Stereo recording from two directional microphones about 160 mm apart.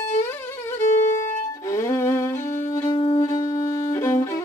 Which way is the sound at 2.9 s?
35° left (ahead or behind).